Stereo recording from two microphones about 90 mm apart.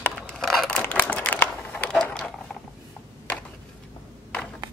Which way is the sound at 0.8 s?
20° left (ahead or behind).